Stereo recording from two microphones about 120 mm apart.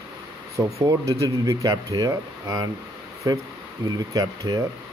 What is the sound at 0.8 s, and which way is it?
Speech, 30° right (ahead or behind).